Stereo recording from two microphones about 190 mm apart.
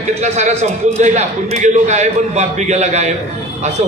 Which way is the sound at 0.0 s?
35° right (ahead or behind).